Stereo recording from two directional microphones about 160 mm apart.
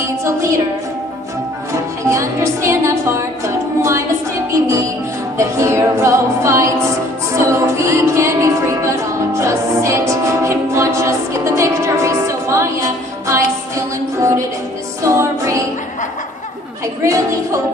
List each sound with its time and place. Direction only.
0.0 s a sound: 20° right (ahead or behind)
1.7 s music: 20° right (ahead or behind)
5.4 s music: 20° right (ahead or behind)
15.0 s music: 20° right (ahead or behind)
17.0 s speech: 20° right (ahead or behind)